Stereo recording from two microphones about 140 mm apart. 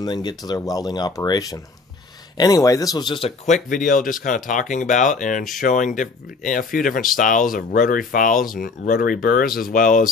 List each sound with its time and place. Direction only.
0.0 s speech: 30° left (ahead or behind)
3.4 s speech: 65° left (ahead or behind)